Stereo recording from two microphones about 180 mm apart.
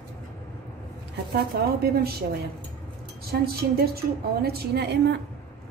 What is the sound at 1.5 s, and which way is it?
Speech, 60° right (ahead or behind).